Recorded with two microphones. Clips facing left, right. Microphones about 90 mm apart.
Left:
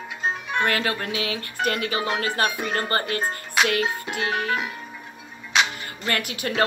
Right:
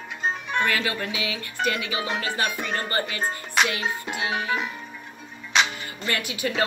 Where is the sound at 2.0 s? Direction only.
Centre (ahead or behind).